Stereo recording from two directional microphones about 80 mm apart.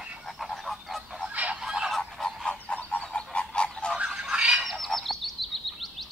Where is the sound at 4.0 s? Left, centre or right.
Centre.